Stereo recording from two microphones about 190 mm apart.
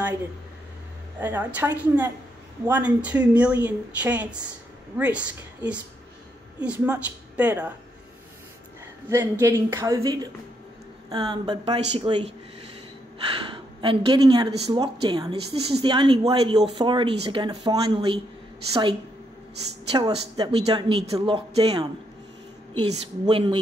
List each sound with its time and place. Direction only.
1.2 s speech: 10° right (ahead or behind)
6.6 s speech: 10° right (ahead or behind)
9.1 s speech: 15° right (ahead or behind); by 12.3 s 30° right (ahead or behind)
13.5 s a woman's voice: 25° right (ahead or behind)
19.9 s speech: 25° right (ahead or behind)